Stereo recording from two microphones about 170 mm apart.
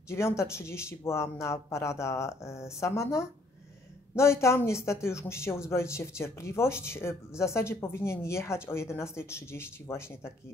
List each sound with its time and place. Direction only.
0.1 s speech: 15° left (ahead or behind)